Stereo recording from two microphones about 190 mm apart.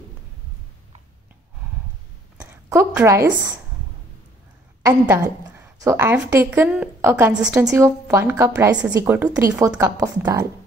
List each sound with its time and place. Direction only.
2.3 s a woman's voice: 10° right (ahead or behind)
4.8 s a woman's voice: 10° right (ahead or behind)